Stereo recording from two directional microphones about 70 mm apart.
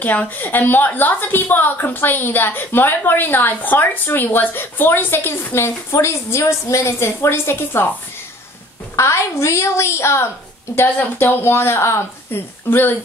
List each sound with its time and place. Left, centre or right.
0.0 s a woman's voice: left
8.9 s a woman's voice: left
12.6 s speech: left